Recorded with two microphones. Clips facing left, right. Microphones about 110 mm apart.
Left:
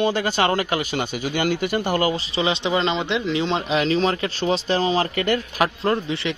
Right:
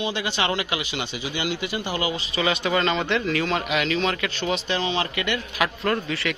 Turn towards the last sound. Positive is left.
turn(degrees=25)  # may be behind; listen again after turning